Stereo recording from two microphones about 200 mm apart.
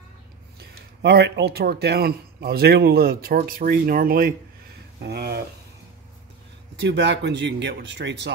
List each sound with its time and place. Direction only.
0.6 s speech: 55° right (ahead or behind)
6.8 s speech: 60° right (ahead or behind)